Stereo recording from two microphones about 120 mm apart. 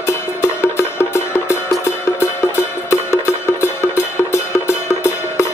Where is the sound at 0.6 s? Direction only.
20° left (ahead or behind).